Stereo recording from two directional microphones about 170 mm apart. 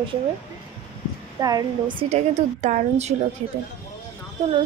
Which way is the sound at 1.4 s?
20° right (ahead or behind).